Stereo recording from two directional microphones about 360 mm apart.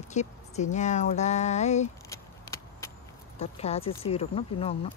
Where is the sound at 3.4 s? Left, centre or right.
Centre.